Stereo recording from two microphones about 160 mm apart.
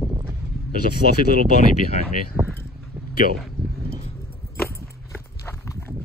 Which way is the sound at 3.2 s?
75° right (ahead or behind).